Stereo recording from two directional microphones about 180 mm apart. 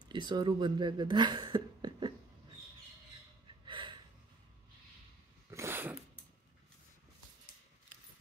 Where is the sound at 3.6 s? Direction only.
25° right (ahead or behind).